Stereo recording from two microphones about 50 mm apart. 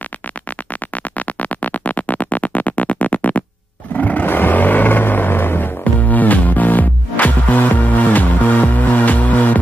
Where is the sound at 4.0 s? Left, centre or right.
Left.